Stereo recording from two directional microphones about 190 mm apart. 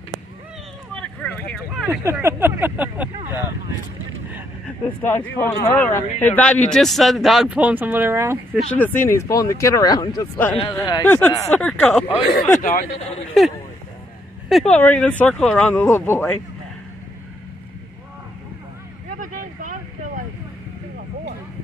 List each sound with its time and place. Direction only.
0.9 s a sound: 5° left (ahead or behind)
1.9 s speech: 10° right (ahead or behind)
4.8 s speech: 10° left (ahead or behind); by 8.4 s 15° right (ahead or behind)
8.7 s speech: 10° left (ahead or behind)
12.3 s speech: 50° left (ahead or behind)
14.5 s speech: 5° left (ahead or behind)
19.0 s vehicle: 45° right (ahead or behind)